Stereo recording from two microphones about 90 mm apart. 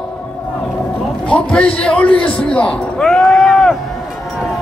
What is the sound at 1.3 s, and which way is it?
A man's voice, 10° left (ahead or behind).